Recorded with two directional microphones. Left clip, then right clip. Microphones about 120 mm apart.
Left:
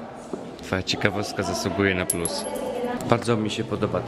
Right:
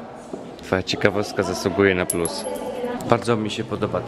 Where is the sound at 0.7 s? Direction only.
20° right (ahead or behind).